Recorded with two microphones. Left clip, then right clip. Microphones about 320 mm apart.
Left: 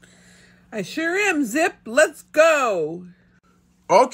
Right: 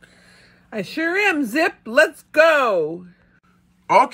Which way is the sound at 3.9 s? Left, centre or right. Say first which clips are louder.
Right 1 dB; centre.